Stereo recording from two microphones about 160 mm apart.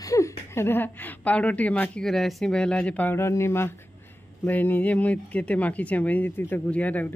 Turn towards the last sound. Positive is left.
turn(degrees=10)  # may be behind; listen again after turning